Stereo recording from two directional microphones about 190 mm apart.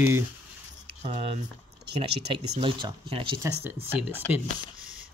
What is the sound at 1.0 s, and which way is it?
Speech, 30° right (ahead or behind).